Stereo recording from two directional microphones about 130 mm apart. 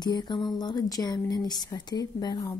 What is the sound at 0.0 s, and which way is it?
A woman's voice, 35° left (ahead or behind).